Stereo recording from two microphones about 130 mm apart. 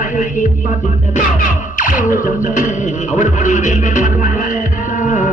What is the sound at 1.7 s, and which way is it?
Music, 90° left.